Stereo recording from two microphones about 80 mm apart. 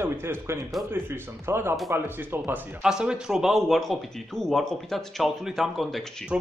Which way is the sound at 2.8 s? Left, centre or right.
Centre.